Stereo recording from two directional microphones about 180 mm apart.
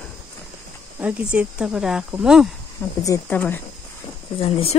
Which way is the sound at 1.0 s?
5° right (ahead or behind).